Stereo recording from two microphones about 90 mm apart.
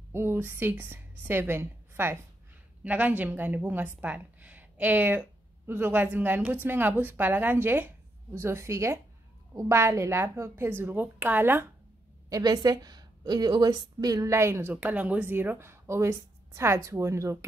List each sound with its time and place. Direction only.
0.1 s a woman's voice: 25° right (ahead or behind)
12.3 s a woman's voice: 40° right (ahead or behind)